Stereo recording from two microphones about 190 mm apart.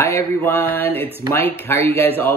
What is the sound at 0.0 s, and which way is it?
Speech, 15° left (ahead or behind).